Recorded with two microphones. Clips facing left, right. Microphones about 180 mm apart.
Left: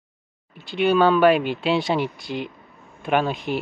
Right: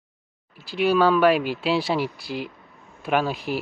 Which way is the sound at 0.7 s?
Centre (ahead or behind).